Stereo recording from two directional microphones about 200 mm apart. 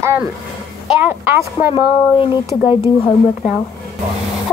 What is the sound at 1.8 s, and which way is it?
Speech, 25° left (ahead or behind).